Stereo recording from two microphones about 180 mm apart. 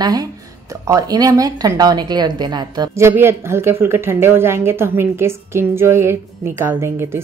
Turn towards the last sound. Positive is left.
turn(degrees=-15)  # may be behind; listen again after turning